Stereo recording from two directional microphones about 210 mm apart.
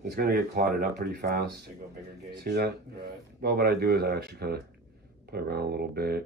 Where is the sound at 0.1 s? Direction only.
45° right (ahead or behind).